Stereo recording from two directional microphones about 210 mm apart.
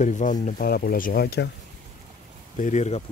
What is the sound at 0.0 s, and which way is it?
Speech, 35° left (ahead or behind).